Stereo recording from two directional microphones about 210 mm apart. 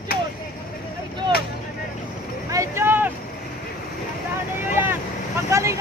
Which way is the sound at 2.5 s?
15° right (ahead or behind).